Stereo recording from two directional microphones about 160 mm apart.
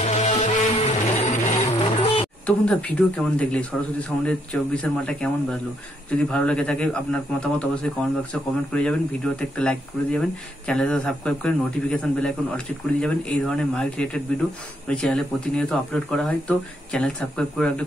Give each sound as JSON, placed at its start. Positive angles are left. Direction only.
{"t": 0.0, "sound": "music", "side_deg": 50}
{"t": 1.8, "sound": "a sound", "side_deg": 35}
{"t": 2.4, "sound": "a man's voice", "side_deg": 5}